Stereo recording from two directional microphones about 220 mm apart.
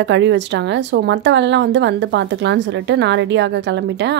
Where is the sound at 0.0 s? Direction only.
55° right (ahead or behind).